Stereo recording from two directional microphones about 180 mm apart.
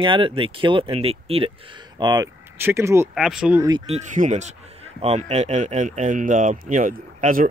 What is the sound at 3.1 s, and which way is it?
Speech, 5° right (ahead or behind).